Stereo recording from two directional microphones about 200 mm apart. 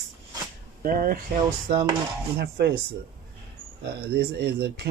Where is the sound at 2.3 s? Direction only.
55° right (ahead or behind).